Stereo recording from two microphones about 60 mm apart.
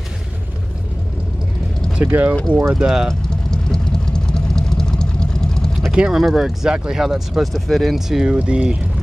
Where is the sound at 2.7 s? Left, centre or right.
Centre.